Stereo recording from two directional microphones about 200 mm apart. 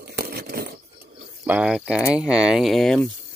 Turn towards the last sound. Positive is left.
turn(degrees=5)  # may be behind; listen again after turning